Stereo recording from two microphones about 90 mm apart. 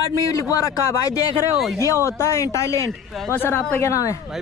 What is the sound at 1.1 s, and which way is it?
Speech, 40° left (ahead or behind).